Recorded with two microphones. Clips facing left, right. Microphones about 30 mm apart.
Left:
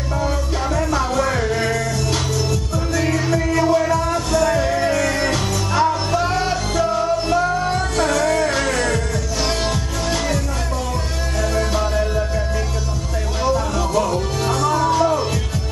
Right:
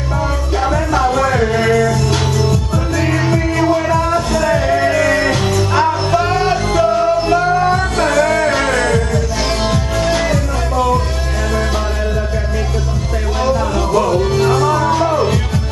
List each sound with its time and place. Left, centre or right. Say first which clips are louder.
0.7 s music: right 6 dB; right
13.4 s music: right 3 dB; right